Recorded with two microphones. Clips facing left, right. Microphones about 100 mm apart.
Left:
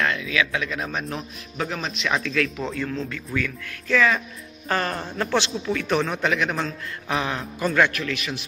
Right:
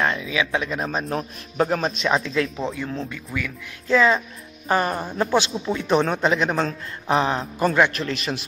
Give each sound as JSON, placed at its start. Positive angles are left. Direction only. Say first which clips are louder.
{"t": 0.0, "sound": "a man's voice", "louder": "right 1 dB", "side_deg": -25}
{"t": 0.8, "sound": "a man's voice", "louder": "right 4 dB", "side_deg": -35}